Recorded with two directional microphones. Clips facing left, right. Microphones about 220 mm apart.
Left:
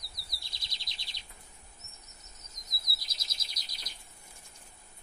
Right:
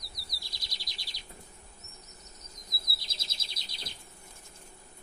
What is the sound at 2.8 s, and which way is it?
Chirp, 25° right (ahead or behind).